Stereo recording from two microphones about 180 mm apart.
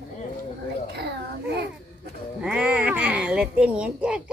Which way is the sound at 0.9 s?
65° right (ahead or behind).